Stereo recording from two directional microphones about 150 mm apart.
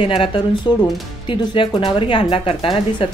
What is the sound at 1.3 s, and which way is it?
Speech, 30° left (ahead or behind).